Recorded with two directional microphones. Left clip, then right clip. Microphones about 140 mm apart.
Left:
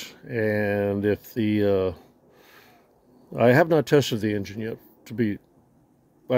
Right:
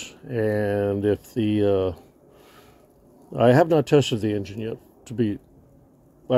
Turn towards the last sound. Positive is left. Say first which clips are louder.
# right 1 dB
turn(degrees=30)  # may be behind; listen again after turning